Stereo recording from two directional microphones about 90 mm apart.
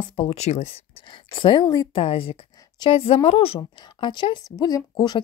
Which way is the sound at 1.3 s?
65° left (ahead or behind).